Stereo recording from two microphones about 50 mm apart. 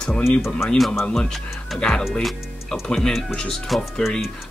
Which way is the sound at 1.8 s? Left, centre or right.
Centre.